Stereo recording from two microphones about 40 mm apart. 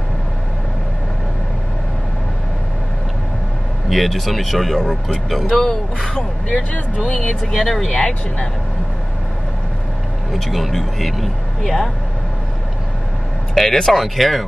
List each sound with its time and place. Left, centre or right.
3.9 s speech: centre
5.5 s speech: centre
7.2 s speech: centre
8.0 s speech: left
10.3 s speech: centre
13.6 s speech: centre